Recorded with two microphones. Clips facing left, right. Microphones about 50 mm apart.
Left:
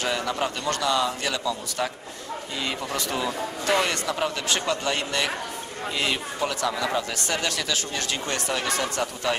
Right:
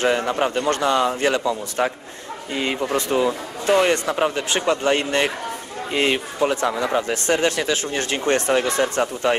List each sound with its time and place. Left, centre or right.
0.0 s a man's voice: right